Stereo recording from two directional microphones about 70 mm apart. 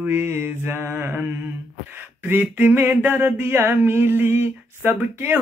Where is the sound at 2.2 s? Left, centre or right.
Right.